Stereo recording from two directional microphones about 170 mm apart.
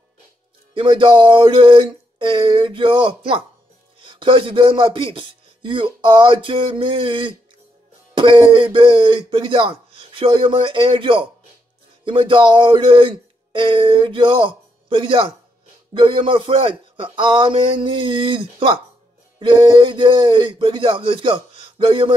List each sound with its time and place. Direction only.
0.7 s a man's voice: 30° right (ahead or behind)